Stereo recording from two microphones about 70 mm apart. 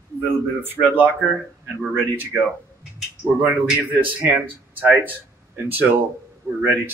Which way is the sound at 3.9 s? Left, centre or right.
Right.